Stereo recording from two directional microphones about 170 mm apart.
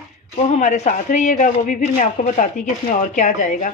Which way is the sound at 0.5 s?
40° left (ahead or behind).